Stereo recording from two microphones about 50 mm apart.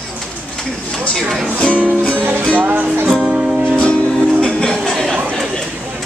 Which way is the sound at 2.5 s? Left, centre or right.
Right.